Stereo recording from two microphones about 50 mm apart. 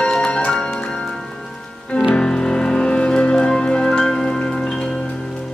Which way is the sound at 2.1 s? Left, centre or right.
Centre.